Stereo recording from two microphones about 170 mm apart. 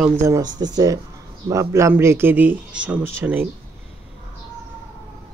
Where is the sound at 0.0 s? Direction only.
15° right (ahead or behind).